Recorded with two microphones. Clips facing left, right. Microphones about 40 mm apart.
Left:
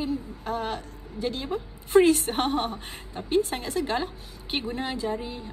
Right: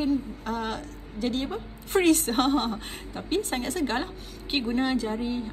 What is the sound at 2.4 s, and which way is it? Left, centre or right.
A woman's voice, right.